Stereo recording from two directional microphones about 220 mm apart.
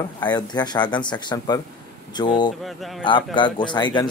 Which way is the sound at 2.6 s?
Centre (ahead or behind).